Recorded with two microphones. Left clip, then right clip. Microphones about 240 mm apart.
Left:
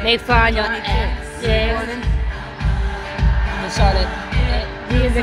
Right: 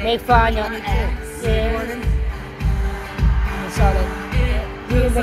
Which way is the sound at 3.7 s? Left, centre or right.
Centre.